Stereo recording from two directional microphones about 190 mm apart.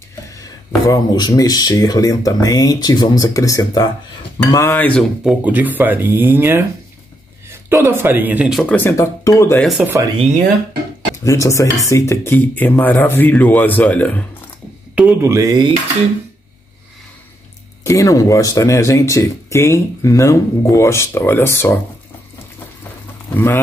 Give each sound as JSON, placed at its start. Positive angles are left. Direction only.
{"t": 0.4, "sound": "speech", "side_deg": 20}
{"t": 9.6, "sound": "speech", "side_deg": -5}
{"t": 10.1, "sound": "speech", "side_deg": -35}
{"t": 11.2, "sound": "speech", "side_deg": 15}
{"t": 15.0, "sound": "speech", "side_deg": -10}
{"t": 17.8, "sound": "speech", "side_deg": 20}
{"t": 23.3, "sound": "speech", "side_deg": 10}